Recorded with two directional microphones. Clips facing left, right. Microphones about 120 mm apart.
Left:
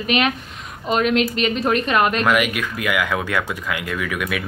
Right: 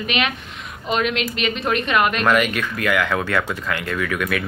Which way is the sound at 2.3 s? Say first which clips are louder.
Right 1 dB; 10° left (ahead or behind).